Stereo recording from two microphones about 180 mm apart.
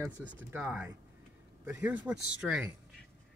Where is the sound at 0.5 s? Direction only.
10° right (ahead or behind).